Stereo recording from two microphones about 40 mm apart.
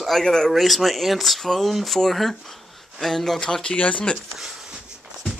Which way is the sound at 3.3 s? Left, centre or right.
Centre.